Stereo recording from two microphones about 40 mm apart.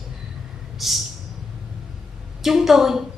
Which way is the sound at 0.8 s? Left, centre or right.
Centre.